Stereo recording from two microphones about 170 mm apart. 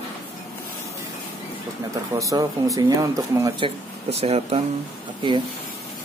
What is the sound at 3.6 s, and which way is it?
Speech, 40° right (ahead or behind).